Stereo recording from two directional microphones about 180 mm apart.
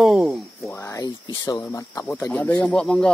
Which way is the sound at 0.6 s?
15° left (ahead or behind).